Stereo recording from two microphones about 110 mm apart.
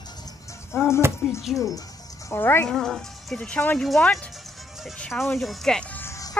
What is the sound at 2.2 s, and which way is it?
Speech, 20° left (ahead or behind).